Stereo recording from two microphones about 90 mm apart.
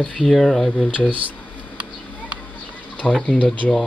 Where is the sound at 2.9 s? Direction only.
15° left (ahead or behind).